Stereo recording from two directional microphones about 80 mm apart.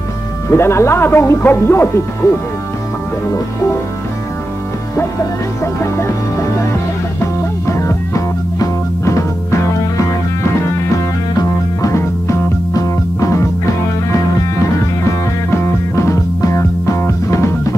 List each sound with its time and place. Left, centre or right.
0.5 s speech: left
7.6 s music: left
11.8 s music: left
15.5 s music: left